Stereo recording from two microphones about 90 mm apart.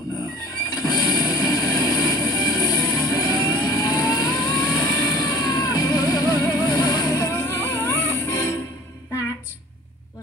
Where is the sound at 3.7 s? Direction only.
40° left (ahead or behind).